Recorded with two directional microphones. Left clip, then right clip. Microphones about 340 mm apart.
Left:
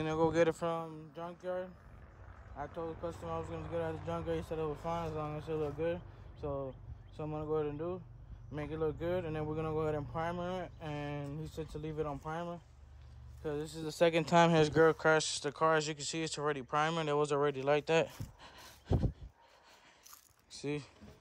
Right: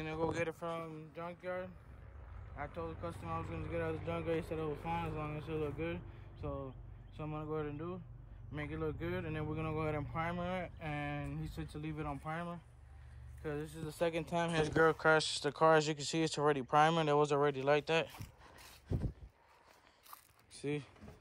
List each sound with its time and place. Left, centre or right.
0.0 s speech: left
0.8 s speech: centre
20.6 s speech: centre